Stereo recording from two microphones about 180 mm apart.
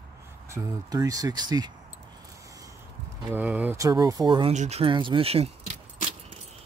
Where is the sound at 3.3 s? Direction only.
10° right (ahead or behind); by 4.5 s 25° right (ahead or behind).